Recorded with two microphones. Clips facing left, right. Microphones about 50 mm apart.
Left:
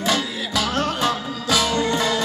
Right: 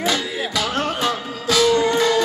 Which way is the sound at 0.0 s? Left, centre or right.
Centre.